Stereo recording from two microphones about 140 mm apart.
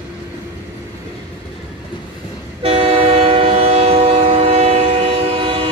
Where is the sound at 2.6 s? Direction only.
45° right (ahead or behind).